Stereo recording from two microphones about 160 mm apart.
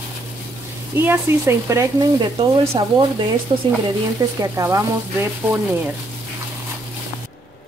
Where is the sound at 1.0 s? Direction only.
15° right (ahead or behind).